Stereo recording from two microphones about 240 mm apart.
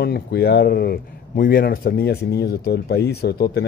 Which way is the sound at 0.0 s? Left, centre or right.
Left.